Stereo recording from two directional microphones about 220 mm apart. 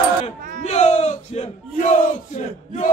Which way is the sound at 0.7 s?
30° left (ahead or behind).